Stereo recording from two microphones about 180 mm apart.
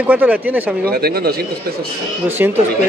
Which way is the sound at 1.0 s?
60° right (ahead or behind).